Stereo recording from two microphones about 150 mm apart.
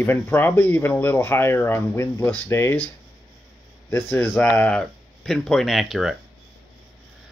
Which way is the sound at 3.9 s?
15° left (ahead or behind).